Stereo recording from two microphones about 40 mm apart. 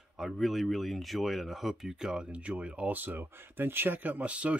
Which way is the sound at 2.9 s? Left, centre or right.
Right.